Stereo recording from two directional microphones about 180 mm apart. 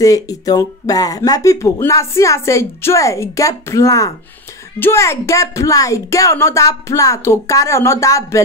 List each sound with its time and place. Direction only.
0.0 s speech: 20° left (ahead or behind)